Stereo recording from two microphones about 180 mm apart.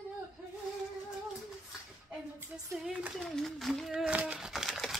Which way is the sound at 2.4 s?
10° right (ahead or behind).